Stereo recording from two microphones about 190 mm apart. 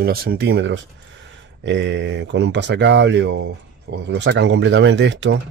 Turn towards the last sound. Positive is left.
turn(degrees=-70)  # may be behind; listen again after turning